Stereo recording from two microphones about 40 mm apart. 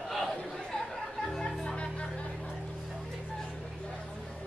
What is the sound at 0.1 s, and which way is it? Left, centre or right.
Chatter, centre.